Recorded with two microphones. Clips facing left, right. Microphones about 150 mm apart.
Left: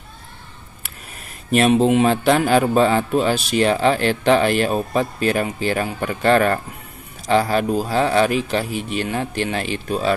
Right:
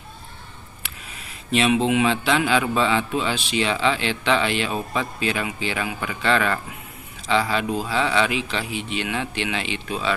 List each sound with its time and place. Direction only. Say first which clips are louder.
1.5 s a man's voice: left 5 dB; 45° left (ahead or behind)